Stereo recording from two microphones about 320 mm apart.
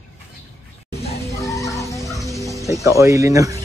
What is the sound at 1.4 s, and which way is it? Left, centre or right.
Music, centre.